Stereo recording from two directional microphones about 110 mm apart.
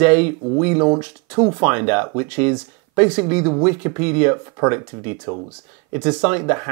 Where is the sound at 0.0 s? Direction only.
15° right (ahead or behind).